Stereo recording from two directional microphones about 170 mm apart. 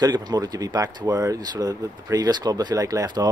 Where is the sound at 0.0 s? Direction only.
25° right (ahead or behind).